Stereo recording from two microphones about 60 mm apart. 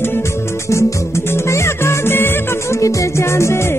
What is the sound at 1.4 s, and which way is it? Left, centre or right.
Music, left.